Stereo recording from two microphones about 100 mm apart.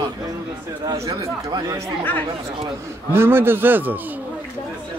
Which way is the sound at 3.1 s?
20° right (ahead or behind).